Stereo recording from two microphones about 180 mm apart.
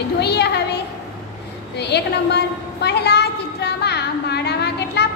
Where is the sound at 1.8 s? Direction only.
65° left (ahead or behind).